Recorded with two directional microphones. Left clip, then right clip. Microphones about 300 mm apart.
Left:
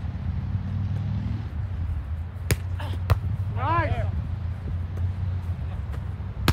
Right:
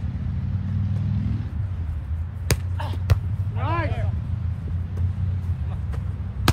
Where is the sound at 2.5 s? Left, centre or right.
Centre.